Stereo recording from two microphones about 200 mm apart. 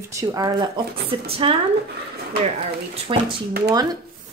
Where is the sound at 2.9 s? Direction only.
25° right (ahead or behind).